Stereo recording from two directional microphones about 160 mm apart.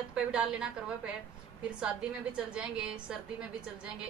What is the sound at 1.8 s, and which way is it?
A woman's voice, 5° right (ahead or behind).